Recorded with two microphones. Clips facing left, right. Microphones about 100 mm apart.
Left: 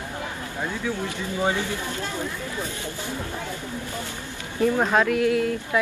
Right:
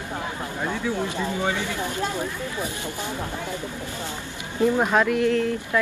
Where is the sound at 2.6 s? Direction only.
15° right (ahead or behind).